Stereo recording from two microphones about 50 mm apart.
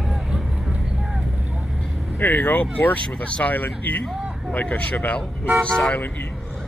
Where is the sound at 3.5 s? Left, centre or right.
Left.